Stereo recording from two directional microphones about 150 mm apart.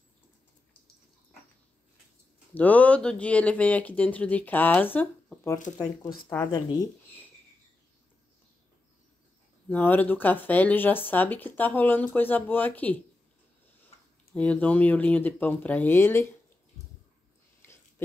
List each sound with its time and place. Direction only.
2.5 s speech: 10° left (ahead or behind)
9.7 s speech: 10° left (ahead or behind)
14.3 s speech: 10° left (ahead or behind)
17.6 s a sound: 15° left (ahead or behind)